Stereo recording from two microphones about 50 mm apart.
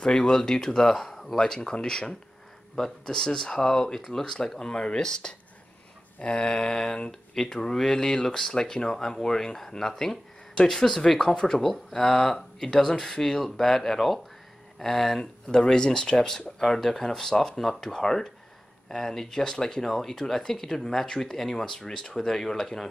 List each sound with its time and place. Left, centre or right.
0.0 s speech: centre